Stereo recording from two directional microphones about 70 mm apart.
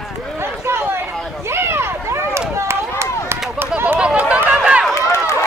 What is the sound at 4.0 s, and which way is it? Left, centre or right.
Chatter, centre.